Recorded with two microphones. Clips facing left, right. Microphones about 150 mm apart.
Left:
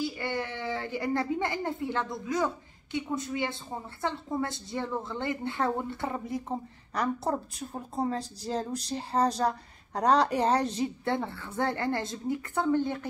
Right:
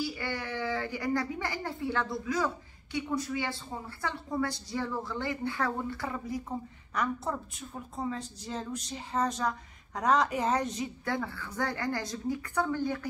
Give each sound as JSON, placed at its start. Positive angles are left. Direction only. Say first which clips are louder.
{"t": 0.0, "sound": "speech", "louder": "left 3 dB", "side_deg": 25}
{"t": 6.9, "sound": "a woman's voice", "louder": "left 3 dB", "side_deg": 35}